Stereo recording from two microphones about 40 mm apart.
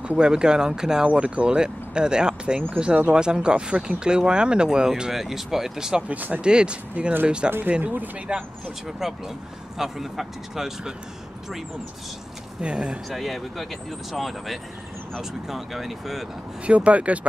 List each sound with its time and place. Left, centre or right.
0.2 s speech: right
1.0 s speech: right
5.1 s speech: centre
6.0 s speech: right
6.4 s speech: right
7.8 s speech: right
8.3 s speech: right
8.8 s speech: centre
12.6 s speech: right
13.1 s speech: centre
16.6 s speech: right